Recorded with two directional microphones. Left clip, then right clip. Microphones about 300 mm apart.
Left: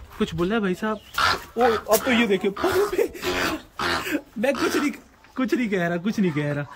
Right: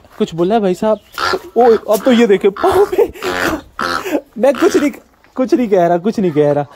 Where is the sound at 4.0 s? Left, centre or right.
Centre.